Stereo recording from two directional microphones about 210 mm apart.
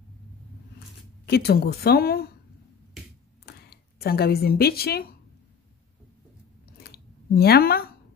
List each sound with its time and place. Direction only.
1.2 s speech: 50° left (ahead or behind)
3.4 s speech: 45° left (ahead or behind)
6.8 s a sound: 45° left (ahead or behind)